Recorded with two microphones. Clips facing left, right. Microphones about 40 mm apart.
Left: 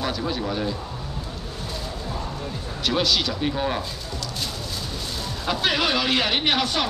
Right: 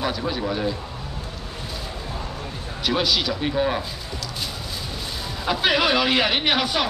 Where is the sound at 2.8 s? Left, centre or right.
Centre.